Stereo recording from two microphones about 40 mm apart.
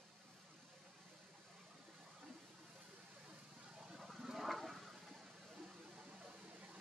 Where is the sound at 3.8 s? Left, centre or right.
Centre.